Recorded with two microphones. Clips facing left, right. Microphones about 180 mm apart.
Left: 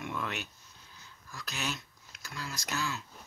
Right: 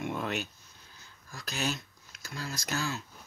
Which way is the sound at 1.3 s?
40° right (ahead or behind).